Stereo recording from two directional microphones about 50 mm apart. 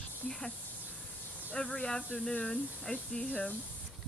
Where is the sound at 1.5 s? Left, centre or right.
Centre.